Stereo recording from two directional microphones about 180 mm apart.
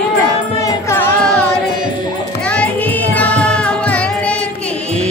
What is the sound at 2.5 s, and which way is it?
Music, 10° left (ahead or behind).